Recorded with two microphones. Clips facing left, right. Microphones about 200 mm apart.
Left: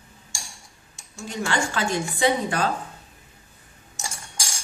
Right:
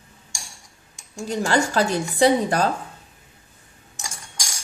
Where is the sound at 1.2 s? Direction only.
40° right (ahead or behind).